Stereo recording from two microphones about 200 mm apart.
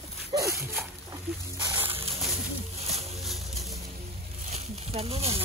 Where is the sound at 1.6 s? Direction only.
10° right (ahead or behind).